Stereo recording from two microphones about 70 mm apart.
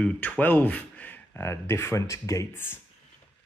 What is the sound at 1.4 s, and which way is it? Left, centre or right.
Speech, left.